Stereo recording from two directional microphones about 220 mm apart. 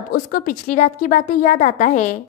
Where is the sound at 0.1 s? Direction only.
40° left (ahead or behind).